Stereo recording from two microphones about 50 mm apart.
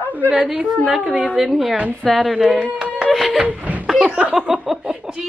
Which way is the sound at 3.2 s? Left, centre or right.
Right.